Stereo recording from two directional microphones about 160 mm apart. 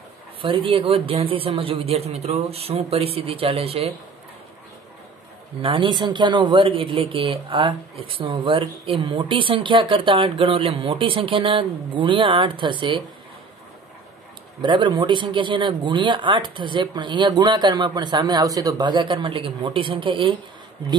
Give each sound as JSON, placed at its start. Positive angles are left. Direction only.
{"t": 0.4, "sound": "a man's voice", "side_deg": -35}
{"t": 5.6, "sound": "a man's voice", "side_deg": -30}
{"t": 14.6, "sound": "speech", "side_deg": -30}